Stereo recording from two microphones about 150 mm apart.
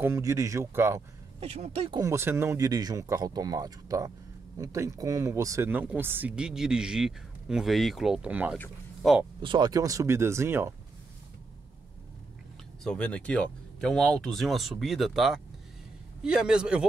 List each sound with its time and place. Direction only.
0.0 s speech: 20° right (ahead or behind)
1.4 s speech: 45° right (ahead or behind)
2.0 s speech: 20° right (ahead or behind)
9.4 s speech: 30° right (ahead or behind)
12.8 s speech: 5° left (ahead or behind)